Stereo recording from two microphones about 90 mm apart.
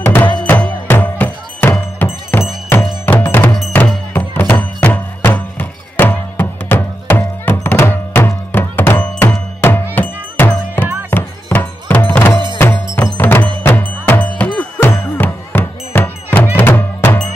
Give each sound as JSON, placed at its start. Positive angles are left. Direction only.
{"t": 0.0, "sound": "music", "side_deg": 25}
{"t": 12.9, "sound": "cowbell", "side_deg": 25}
{"t": 14.8, "sound": "music", "side_deg": 20}